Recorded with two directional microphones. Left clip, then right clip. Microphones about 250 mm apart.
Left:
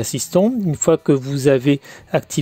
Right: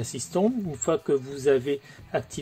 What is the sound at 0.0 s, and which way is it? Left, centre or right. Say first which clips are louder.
Speech: left 9 dB; left.